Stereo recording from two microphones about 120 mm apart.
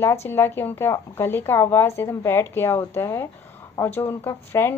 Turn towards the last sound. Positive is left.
turn(degrees=20)  # may be behind; listen again after turning